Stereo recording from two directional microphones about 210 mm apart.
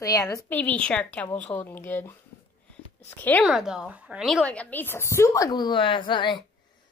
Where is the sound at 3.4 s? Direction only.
5° right (ahead or behind).